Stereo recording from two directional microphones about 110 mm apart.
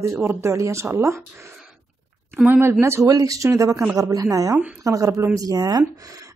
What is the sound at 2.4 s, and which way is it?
Speech, 20° right (ahead or behind).